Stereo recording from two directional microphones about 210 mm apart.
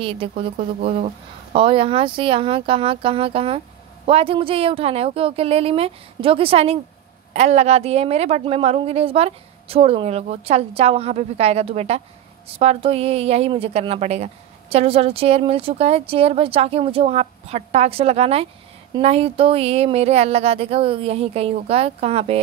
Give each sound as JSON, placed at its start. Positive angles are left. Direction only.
{"t": 0.0, "sound": "a woman's voice", "side_deg": -25}